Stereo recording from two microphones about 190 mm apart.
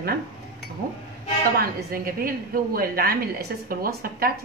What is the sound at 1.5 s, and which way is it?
A woman's voice, 50° right (ahead or behind).